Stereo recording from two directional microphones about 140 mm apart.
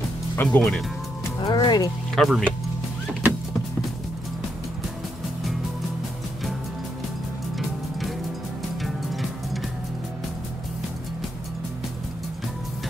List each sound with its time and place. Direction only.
0.4 s speech: 5° left (ahead or behind)
1.4 s speech: 30° left (ahead or behind)
2.1 s speech: centre (ahead or behind)